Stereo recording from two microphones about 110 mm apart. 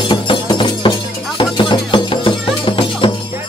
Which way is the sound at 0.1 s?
45° left (ahead or behind).